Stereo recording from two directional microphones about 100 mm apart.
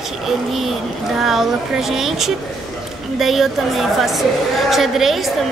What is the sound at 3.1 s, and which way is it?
A woman's voice, centre (ahead or behind).